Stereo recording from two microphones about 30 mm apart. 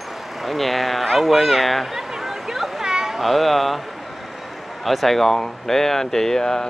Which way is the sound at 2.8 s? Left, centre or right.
Centre.